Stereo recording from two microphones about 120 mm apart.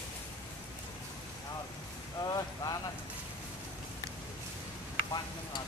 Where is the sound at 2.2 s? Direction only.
35° left (ahead or behind).